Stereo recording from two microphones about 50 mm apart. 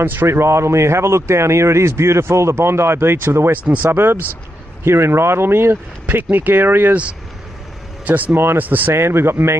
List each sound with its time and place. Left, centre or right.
0.0 s speech: right
0.3 s speech: right
3.6 s speech: right
3.9 s speech: right
6.3 s speech: right
8.0 s speech: right
8.9 s speech: right